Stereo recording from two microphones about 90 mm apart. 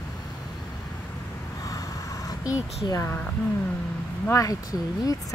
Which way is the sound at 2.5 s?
40° left (ahead or behind).